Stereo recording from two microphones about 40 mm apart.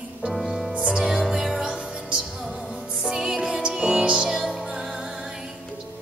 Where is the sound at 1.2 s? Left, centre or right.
Centre.